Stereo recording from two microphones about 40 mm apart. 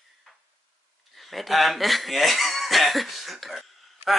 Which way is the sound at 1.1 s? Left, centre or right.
Centre.